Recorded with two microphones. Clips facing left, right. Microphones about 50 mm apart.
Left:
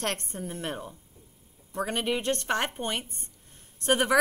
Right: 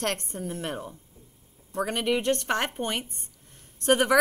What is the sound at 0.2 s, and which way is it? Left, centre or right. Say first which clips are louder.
Speech: right 2 dB; left.